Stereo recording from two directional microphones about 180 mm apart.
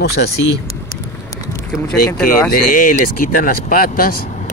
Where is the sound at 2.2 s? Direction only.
55° left (ahead or behind).